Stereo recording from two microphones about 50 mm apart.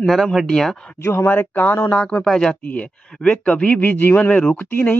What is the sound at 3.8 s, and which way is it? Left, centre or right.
Speech, left.